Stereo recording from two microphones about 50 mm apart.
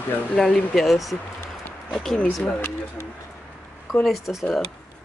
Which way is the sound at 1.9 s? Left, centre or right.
Centre.